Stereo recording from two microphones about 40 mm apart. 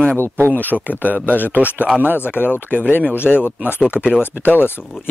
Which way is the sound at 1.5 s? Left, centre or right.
Right.